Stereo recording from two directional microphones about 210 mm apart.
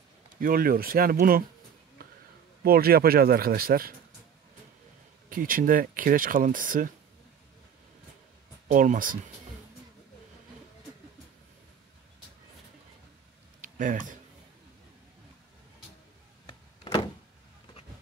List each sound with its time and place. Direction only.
0.4 s speech: 45° right (ahead or behind)
2.6 s speech: 45° right (ahead or behind)
5.3 s speech: 40° right (ahead or behind)
8.7 s speech: 40° right (ahead or behind)
13.6 s a sound: 40° right (ahead or behind)
16.4 s power windows: 25° left (ahead or behind)